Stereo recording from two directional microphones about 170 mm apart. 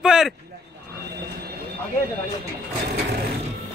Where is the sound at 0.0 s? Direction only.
5° right (ahead or behind).